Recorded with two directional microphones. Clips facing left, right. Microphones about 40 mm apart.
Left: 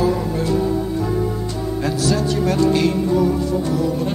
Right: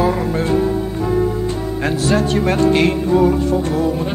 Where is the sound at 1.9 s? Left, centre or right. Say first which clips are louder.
Right 3 dB; right.